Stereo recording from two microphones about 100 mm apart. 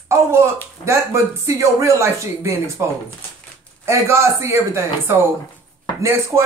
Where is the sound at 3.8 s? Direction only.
30° right (ahead or behind).